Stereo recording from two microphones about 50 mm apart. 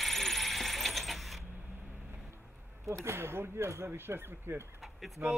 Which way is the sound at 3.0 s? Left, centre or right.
Right.